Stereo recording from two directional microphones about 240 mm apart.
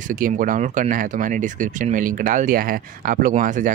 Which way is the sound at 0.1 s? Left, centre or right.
Right.